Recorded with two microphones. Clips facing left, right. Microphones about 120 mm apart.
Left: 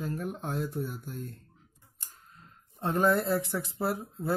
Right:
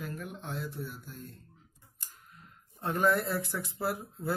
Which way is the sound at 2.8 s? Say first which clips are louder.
Left 2 dB; 25° left (ahead or behind).